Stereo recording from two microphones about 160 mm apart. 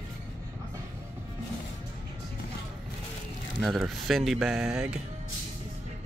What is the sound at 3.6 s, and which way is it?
Speech, centre (ahead or behind).